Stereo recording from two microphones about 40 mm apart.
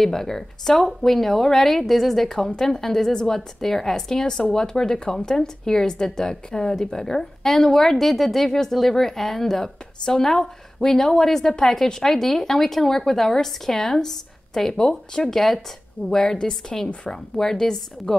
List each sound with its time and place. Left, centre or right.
0.0 s a woman's voice: centre
2.2 s a woman's voice: centre